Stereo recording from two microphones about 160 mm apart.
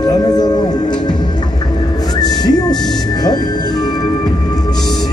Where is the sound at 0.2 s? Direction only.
25° left (ahead or behind).